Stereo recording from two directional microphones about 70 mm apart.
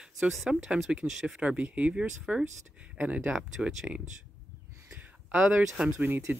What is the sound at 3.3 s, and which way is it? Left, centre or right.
Speech, centre.